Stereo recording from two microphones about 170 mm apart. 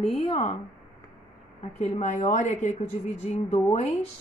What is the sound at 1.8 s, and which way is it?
A woman's voice, 45° left (ahead or behind).